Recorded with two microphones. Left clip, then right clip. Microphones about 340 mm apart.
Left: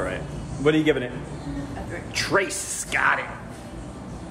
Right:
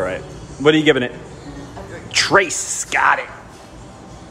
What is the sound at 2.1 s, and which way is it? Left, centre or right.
A man's voice, right.